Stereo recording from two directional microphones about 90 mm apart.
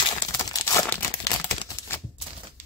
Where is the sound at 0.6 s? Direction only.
30° left (ahead or behind).